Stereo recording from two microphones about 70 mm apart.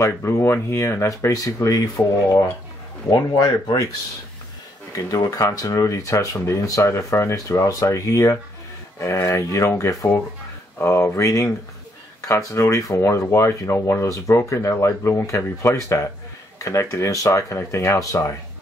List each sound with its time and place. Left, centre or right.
0.0 s speech: left
3.2 s speech: left
5.1 s speech: left